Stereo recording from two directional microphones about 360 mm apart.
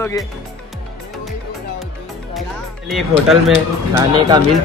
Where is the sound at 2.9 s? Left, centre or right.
Centre.